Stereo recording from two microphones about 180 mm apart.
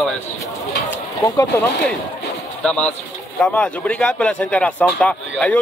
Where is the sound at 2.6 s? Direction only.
5° left (ahead or behind).